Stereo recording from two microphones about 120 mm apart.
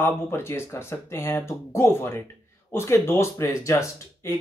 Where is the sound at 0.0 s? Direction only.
20° left (ahead or behind).